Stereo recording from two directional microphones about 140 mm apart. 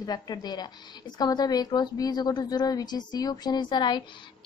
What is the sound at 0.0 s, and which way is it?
A woman's voice, 30° left (ahead or behind).